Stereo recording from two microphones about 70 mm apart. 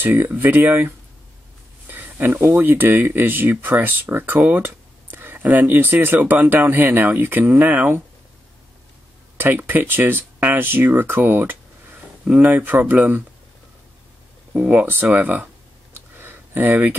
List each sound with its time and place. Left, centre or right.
0.0 s speech: right
1.9 s a sound: right
2.4 s speech: right
9.4 s speech: right
14.5 s speech: centre
15.9 s a sound: right